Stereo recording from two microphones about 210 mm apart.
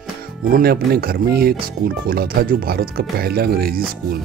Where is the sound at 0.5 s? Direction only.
45° right (ahead or behind).